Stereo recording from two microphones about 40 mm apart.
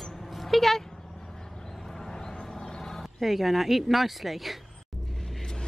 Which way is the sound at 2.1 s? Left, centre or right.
Centre.